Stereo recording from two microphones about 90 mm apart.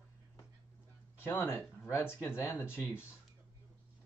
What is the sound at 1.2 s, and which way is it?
Speech, 20° left (ahead or behind).